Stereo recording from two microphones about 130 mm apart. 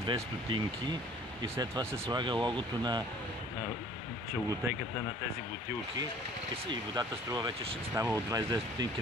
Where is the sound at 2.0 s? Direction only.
35° right (ahead or behind).